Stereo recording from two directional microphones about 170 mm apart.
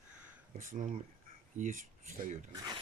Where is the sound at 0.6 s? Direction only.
50° right (ahead or behind).